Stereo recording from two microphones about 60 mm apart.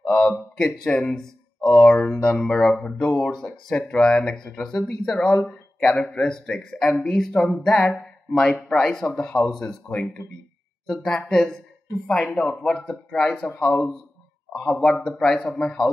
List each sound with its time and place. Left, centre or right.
0.0 s speech: centre
10.2 s speech: left
10.9 s speech: centre